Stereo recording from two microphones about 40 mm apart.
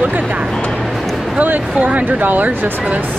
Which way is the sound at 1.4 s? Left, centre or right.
Right.